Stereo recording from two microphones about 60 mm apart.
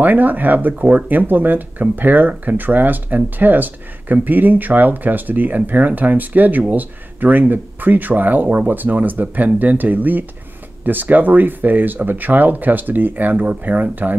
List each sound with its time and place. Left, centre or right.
0.0 s speech: right